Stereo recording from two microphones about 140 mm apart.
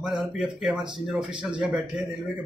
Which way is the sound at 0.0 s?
5° right (ahead or behind).